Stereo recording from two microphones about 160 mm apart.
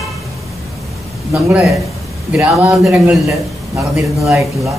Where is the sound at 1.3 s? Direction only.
5° right (ahead or behind).